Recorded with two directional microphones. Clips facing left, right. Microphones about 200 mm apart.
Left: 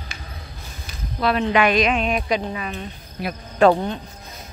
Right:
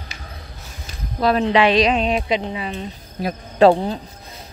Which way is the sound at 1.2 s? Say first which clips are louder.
Right 3 dB; 35° right (ahead or behind).